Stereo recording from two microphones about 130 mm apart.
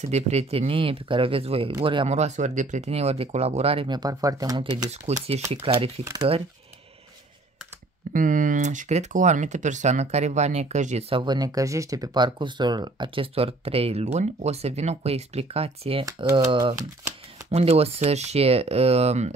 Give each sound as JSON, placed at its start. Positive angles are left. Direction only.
{"t": 0.0, "sound": "speech", "side_deg": -55}
{"t": 2.0, "sound": "speech", "side_deg": -60}
{"t": 3.9, "sound": "speech", "side_deg": -30}
{"t": 5.2, "sound": "speech", "side_deg": -50}
{"t": 8.1, "sound": "speech", "side_deg": -90}
{"t": 11.1, "sound": "speech", "side_deg": -40}
{"t": 16.3, "sound": "speech", "side_deg": -25}
{"t": 17.5, "sound": "speech", "side_deg": -50}